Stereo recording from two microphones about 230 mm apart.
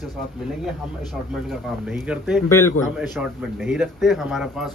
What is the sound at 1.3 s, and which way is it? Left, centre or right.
A man's voice, centre.